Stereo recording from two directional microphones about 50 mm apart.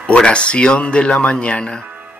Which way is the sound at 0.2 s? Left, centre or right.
Left.